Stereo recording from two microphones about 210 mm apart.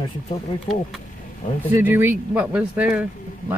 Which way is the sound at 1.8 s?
10° right (ahead or behind).